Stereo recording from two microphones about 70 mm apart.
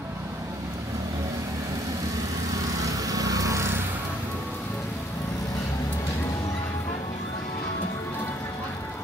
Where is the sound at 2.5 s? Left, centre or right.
Right.